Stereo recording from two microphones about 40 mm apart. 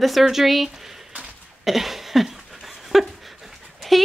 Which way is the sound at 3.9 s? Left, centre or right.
Centre.